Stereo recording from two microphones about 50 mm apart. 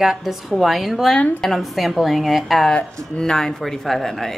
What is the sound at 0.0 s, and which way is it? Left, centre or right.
A woman's voice, centre.